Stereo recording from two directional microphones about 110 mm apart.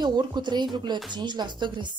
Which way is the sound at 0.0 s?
40° right (ahead or behind).